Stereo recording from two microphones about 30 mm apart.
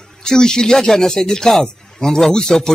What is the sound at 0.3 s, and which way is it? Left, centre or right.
Speech, left.